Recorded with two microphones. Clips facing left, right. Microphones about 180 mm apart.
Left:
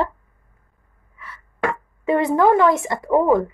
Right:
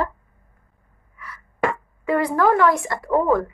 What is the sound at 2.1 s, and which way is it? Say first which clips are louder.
A woman's voice: left 3 dB; 20° left (ahead or behind).